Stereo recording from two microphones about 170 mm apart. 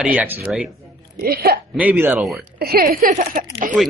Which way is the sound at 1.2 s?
65° right (ahead or behind).